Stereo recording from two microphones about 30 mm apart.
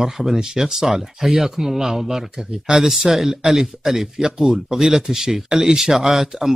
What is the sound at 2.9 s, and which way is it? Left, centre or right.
A man's voice, centre.